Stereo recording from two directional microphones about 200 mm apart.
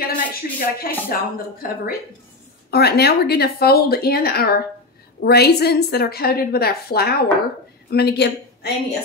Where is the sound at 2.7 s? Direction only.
55° left (ahead or behind).